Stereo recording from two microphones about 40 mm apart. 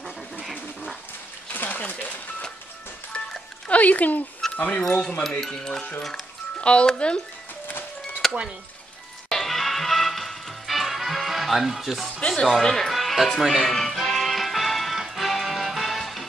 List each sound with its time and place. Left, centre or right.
1.5 s a sound: left
3.6 s speech: left
4.4 s a sound: centre
4.7 s speech: centre
6.6 s speech: left
8.2 s a sound: centre
9.3 s music: centre
12.3 s speech: centre
12.9 s music: centre
13.4 s speech: centre
13.7 s music: centre